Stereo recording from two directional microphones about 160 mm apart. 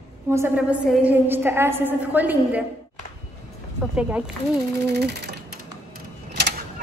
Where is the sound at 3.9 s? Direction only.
5° right (ahead or behind).